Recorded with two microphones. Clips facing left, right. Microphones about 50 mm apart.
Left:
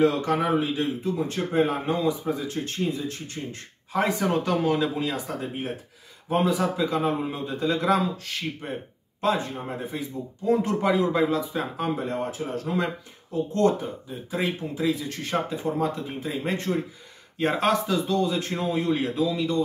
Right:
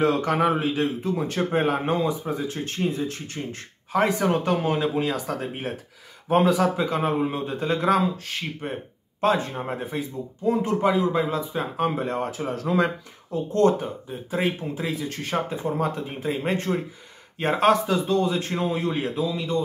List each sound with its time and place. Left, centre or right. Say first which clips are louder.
0.0 s a man's voice: right 1 dB; right
1.9 s a man's voice: right 1 dB; right
4.3 s a man's voice: right 1 dB; right
8.6 s speech: right 2 dB; right
9.5 s speech: right 2 dB; right
10.5 s speech: even; centre
11.7 s speech: right 3 dB; right
12.6 s speech: right 7 dB; right
13.5 s speech: right 3 dB; right
15.2 s speech: left 1 dB; right
15.8 s speech: right 1 dB; right; by 19.5 s centre